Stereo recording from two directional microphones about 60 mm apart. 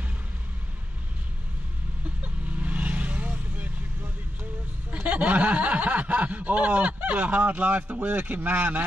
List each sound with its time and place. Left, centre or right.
2.2 s vehicle: right
4.9 s speech: right